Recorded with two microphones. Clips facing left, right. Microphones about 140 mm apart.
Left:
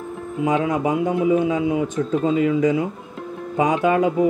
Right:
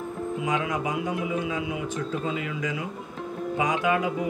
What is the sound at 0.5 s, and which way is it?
A man's voice, 35° left (ahead or behind).